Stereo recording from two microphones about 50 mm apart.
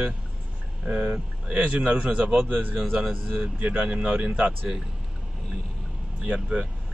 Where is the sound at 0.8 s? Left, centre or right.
Right.